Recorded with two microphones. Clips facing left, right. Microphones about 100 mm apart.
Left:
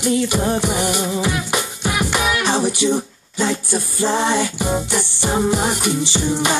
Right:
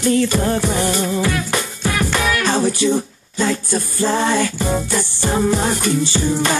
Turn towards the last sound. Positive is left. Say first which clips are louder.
# right 1 dB
turn(degrees=20)  # may be behind; listen again after turning